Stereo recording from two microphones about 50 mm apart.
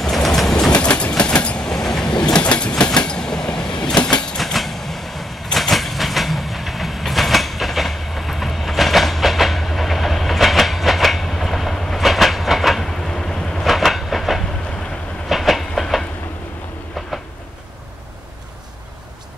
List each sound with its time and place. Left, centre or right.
0.0 s train: centre
0.7 s train: left
4.4 s train: centre
12.8 s vehicle: centre
13.7 s train: centre